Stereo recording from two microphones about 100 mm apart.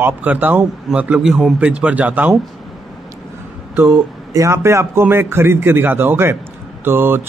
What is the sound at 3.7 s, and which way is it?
A man's voice, 20° right (ahead or behind).